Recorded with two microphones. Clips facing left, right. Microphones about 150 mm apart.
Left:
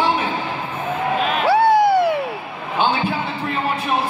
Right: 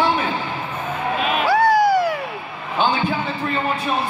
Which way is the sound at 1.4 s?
25° left (ahead or behind).